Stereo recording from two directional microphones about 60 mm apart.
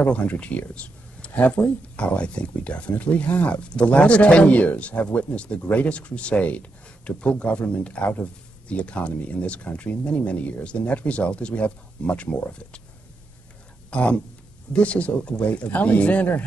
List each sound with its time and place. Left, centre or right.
0.0 s speech: left
12.4 s speech: centre
13.8 s speech: centre